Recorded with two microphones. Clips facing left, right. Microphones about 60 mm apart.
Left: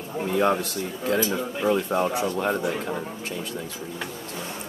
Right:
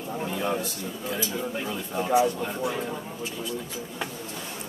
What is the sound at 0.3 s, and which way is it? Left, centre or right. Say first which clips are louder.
Speech: left 8 dB; left.